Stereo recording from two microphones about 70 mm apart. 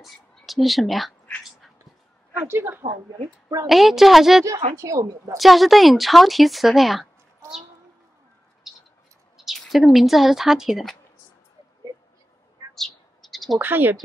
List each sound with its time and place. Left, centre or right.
0.0 s speech: centre
2.4 s a woman's voice: right
3.6 s speech: centre
4.7 s a woman's voice: right
5.4 s speech: centre
8.6 s a sound: centre
9.6 s speech: centre
12.7 s a sound: centre
13.6 s speech: right